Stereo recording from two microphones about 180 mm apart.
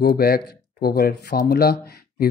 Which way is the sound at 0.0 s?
55° left (ahead or behind).